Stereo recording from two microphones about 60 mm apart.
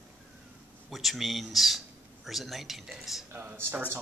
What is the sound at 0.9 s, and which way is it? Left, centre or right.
Speech, centre.